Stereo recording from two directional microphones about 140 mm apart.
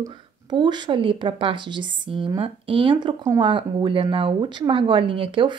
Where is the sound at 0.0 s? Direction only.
30° right (ahead or behind).